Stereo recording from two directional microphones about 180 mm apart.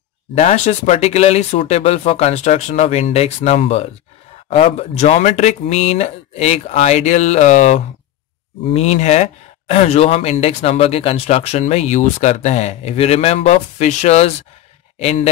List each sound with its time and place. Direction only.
0.3 s speech: 40° left (ahead or behind)